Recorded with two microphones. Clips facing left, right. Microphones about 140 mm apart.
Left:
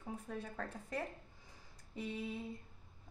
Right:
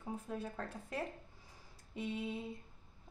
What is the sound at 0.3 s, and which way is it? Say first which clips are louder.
Speech: even; 5° right (ahead or behind).